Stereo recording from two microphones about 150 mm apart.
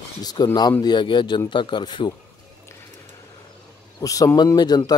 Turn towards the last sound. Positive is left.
turn(degrees=25)  # may be behind; listen again after turning